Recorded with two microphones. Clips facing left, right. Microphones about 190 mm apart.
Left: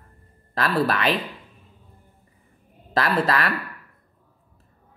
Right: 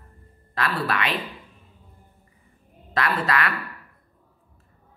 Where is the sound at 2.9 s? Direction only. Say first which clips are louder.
Left 3 dB; 35° left (ahead or behind).